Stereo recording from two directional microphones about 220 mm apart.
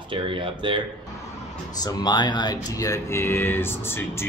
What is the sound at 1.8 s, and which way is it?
Speech, 20° left (ahead or behind).